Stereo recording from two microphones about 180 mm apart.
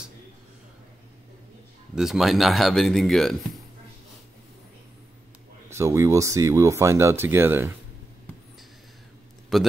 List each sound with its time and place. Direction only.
2.0 s speech: centre (ahead or behind)
5.7 s speech: 15° right (ahead or behind)
9.5 s a man's voice: centre (ahead or behind)